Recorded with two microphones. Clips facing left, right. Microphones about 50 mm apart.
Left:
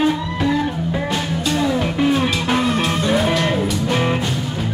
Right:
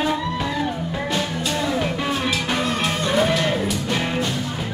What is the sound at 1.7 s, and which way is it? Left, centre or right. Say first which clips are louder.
Music: left 6 dB; centre.